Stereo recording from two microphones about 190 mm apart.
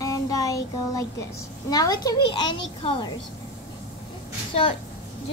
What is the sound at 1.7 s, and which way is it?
Speech, 20° left (ahead or behind).